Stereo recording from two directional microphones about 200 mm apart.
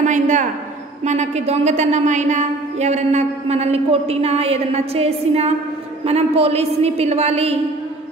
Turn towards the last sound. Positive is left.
turn(degrees=-30)  # may be behind; listen again after turning